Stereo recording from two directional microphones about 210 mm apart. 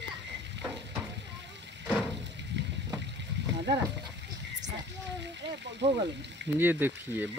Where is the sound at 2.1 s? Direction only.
55° right (ahead or behind).